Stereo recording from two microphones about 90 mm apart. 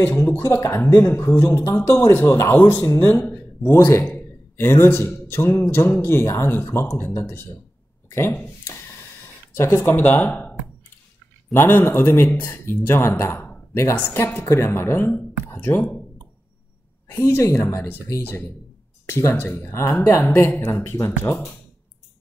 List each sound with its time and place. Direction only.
0.0 s a man's voice: 25° left (ahead or behind)
8.6 s a sound: 30° left (ahead or behind)
11.5 s speech: 25° left (ahead or behind)
17.1 s speech: 30° left (ahead or behind)